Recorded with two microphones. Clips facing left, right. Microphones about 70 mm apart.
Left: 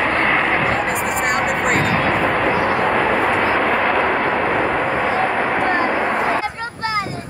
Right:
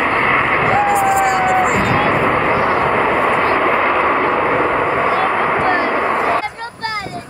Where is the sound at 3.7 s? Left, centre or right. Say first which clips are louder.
Right 3 dB; centre.